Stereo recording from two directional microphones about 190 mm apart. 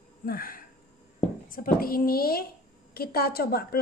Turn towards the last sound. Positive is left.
turn(degrees=55)  # may be behind; listen again after turning